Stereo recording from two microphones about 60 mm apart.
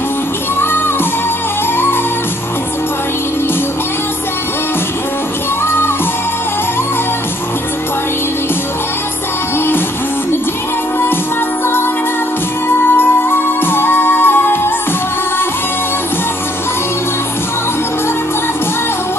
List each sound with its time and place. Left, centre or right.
0.6 s music: left
12.8 s music: left